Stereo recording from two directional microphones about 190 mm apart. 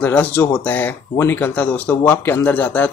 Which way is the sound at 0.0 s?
10° left (ahead or behind).